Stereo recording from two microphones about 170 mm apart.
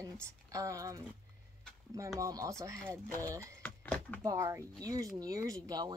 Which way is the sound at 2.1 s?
20° right (ahead or behind).